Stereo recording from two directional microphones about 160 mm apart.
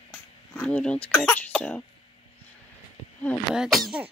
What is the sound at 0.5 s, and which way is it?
Speech, 10° left (ahead or behind).